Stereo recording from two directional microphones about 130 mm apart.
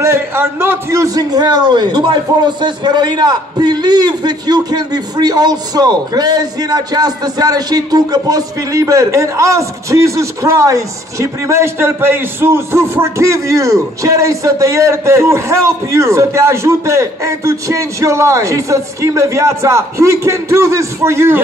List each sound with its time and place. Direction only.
0.0 s a man's voice: 20° right (ahead or behind)